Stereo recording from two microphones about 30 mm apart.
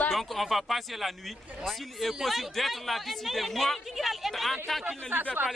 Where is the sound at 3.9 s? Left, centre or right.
Centre.